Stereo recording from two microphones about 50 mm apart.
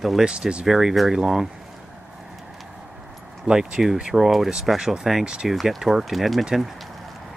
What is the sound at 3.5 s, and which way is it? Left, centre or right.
Speech, centre.